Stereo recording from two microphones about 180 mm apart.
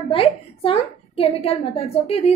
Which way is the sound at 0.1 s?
30° left (ahead or behind).